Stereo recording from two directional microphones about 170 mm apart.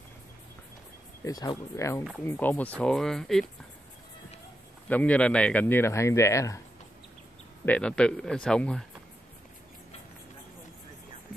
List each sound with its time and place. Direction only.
1.2 s speech: 25° left (ahead or behind); by 3.4 s 5° left (ahead or behind)
4.8 s speech: 10° left (ahead or behind)
7.6 s speech: 5° left (ahead or behind)